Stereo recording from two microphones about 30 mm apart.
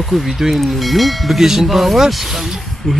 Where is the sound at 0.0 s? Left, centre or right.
Centre.